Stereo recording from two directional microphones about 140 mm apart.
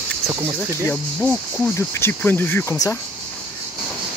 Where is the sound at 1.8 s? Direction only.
15° left (ahead or behind).